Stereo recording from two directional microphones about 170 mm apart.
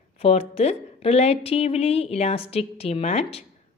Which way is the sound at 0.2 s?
40° left (ahead or behind).